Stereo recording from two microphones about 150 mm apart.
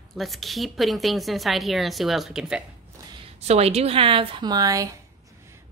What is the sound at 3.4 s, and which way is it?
A woman's voice, 45° right (ahead or behind).